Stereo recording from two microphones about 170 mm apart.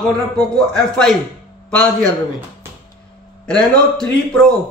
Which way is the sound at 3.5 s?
Centre (ahead or behind).